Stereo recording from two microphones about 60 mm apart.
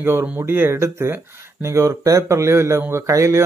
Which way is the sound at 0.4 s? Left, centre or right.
Right.